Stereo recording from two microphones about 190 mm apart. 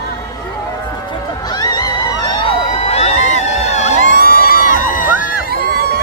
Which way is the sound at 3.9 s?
45° right (ahead or behind).